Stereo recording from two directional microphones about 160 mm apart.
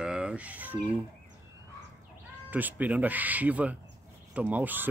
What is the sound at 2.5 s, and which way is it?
Speech, 10° right (ahead or behind).